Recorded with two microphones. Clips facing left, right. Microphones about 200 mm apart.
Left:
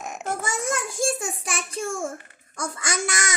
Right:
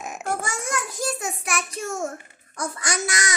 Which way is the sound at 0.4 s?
25° left (ahead or behind).